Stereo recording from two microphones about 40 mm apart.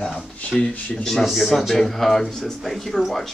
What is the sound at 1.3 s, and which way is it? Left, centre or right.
Speech, centre.